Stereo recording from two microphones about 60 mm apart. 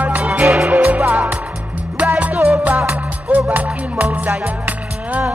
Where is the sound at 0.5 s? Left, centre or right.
Centre.